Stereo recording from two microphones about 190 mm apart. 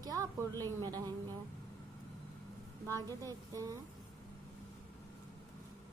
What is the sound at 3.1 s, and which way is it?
Speech, 20° right (ahead or behind).